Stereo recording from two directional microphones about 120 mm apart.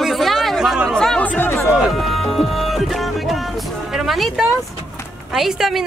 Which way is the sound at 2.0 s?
Centre (ahead or behind).